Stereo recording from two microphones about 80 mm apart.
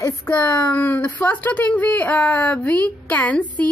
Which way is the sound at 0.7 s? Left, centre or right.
Left.